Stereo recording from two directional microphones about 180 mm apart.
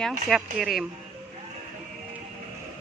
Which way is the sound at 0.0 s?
Centre (ahead or behind).